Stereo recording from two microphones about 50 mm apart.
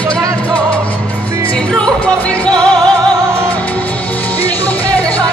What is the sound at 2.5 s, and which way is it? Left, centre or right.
Music, centre.